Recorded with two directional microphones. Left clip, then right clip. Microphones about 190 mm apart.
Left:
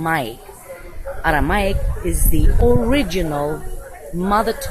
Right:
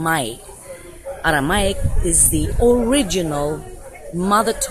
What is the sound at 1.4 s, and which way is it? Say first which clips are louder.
Speech: even; 20° right (ahead or behind).